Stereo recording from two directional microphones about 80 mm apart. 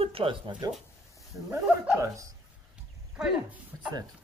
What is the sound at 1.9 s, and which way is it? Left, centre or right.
Speech, right.